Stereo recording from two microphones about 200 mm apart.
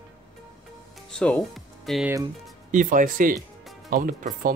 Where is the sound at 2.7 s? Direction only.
40° right (ahead or behind).